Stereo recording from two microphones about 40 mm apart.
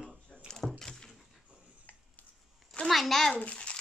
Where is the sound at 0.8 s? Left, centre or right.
Centre.